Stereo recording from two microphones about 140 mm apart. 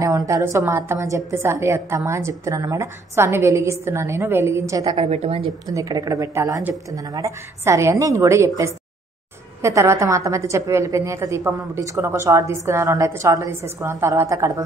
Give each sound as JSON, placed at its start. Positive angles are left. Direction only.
{"t": 0.0, "sound": "a woman's voice", "side_deg": -25}
{"t": 4.9, "sound": "a woman's voice", "side_deg": -45}
{"t": 5.7, "sound": "a woman's voice", "side_deg": -25}